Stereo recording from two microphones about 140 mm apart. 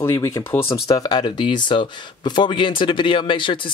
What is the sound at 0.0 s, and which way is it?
Speech, 20° left (ahead or behind).